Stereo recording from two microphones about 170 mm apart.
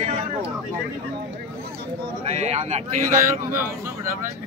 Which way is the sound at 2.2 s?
40° right (ahead or behind).